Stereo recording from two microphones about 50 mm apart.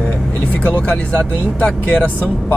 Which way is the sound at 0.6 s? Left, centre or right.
Left.